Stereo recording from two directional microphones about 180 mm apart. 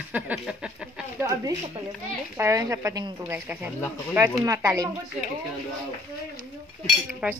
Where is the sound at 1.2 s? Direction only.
20° right (ahead or behind).